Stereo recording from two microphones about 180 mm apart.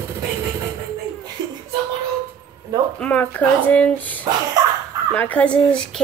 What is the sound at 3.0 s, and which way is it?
Speech, 10° left (ahead or behind).